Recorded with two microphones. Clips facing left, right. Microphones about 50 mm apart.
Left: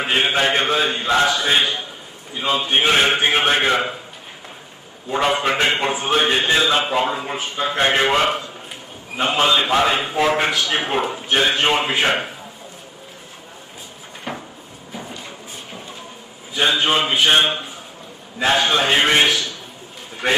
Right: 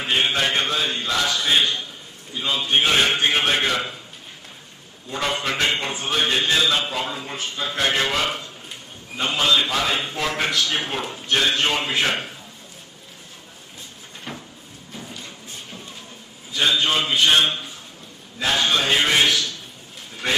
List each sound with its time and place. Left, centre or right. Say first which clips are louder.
0.0 s a man's voice: left 3 dB; left
5.1 s a man's voice: left 6 dB; left
14.3 s a sound: left 6 dB; centre
16.5 s a man's voice: left 3 dB; centre